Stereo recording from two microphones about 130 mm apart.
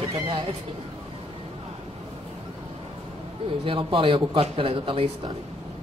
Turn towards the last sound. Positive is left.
turn(degrees=-45)  # may be behind; listen again after turning